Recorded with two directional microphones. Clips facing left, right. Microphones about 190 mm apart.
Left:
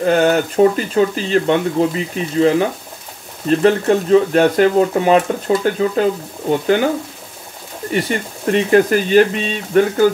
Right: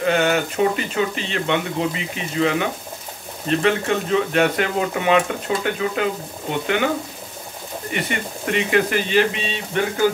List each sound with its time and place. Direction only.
0.0 s speech: 40° left (ahead or behind)
7.9 s speech: 40° left (ahead or behind)